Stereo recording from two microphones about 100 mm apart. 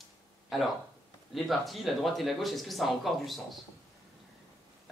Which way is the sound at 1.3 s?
Centre (ahead or behind).